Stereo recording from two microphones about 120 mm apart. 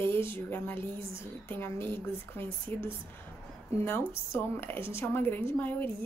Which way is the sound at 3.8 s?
20° left (ahead or behind).